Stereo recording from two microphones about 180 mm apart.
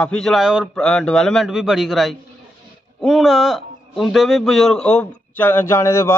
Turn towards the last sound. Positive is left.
turn(degrees=15)  # may be behind; listen again after turning